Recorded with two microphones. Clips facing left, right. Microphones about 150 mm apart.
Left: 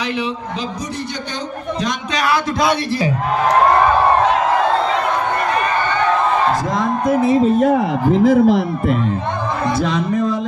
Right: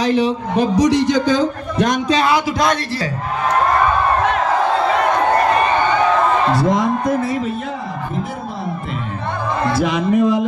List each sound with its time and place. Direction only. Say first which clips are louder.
0.6 s a man's voice: right 11 dB; 75° right (ahead or behind)
7.2 s speech: left 6 dB; 20° left (ahead or behind)
8.1 s speech: left 14 dB; 90° left
9.8 s speech: right 5 dB; 10° right (ahead or behind)